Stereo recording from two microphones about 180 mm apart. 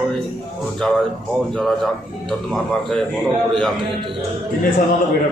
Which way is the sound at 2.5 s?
5° left (ahead or behind).